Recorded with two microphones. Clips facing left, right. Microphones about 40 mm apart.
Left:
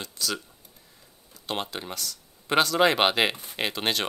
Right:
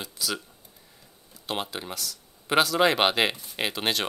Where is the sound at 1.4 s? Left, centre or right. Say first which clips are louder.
Even; centre.